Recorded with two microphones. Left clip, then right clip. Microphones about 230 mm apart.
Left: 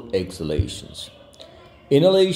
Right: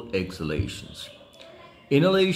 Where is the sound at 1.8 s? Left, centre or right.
Centre.